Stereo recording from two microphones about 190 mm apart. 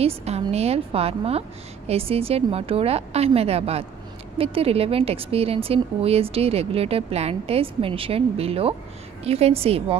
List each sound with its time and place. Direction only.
0.0 s a woman's voice: 35° right (ahead or behind)